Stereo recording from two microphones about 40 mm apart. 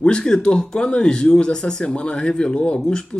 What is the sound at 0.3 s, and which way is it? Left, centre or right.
Speech, centre.